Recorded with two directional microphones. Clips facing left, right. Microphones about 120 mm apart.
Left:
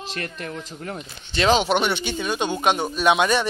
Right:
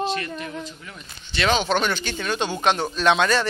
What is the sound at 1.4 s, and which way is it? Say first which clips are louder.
Speech: left 3 dB; 30° left (ahead or behind).